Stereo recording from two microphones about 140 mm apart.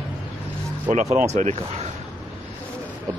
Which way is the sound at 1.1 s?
55° right (ahead or behind).